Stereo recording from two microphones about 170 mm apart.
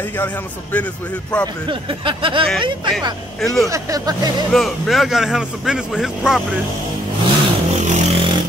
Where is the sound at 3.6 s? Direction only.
20° right (ahead or behind).